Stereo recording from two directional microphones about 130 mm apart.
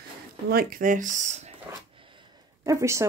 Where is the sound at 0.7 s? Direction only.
90° right; by 1.5 s 70° right (ahead or behind).